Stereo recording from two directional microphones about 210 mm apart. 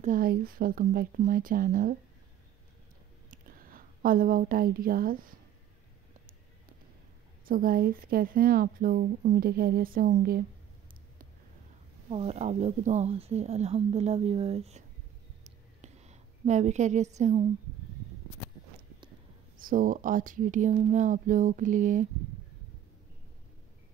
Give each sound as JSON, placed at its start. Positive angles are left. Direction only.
{"t": 0.0, "sound": "speech", "side_deg": -40}
{"t": 3.3, "sound": "a woman's voice", "side_deg": -40}
{"t": 7.4, "sound": "speech", "side_deg": -45}
{"t": 12.1, "sound": "speech", "side_deg": -30}
{"t": 15.4, "sound": "a sound", "side_deg": -35}
{"t": 19.6, "sound": "speech", "side_deg": -40}